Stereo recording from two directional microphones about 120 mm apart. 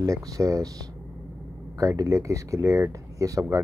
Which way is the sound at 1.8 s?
25° right (ahead or behind).